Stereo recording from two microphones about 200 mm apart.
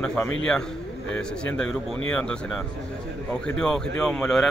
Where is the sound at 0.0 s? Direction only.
5° left (ahead or behind).